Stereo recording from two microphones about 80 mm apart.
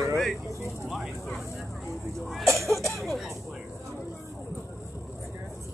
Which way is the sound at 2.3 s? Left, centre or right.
Centre.